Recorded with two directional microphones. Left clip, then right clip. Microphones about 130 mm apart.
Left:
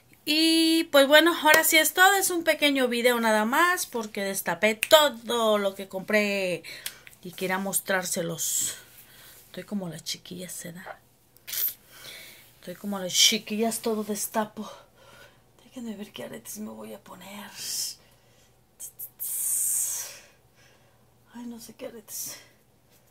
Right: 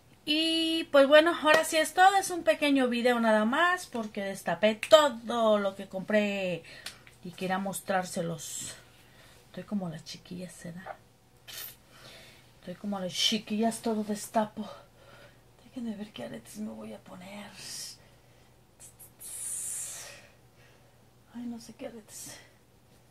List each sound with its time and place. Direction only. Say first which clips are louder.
0.2 s speech: left 5 dB; 15° left (ahead or behind)
12.6 s speech: left 3 dB; 25° left (ahead or behind)
13.5 s speech: left 3 dB; 10° left (ahead or behind)
15.7 s speech: left 1 dB; 20° left (ahead or behind)